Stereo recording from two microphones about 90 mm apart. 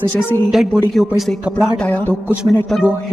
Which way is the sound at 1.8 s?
20° left (ahead or behind).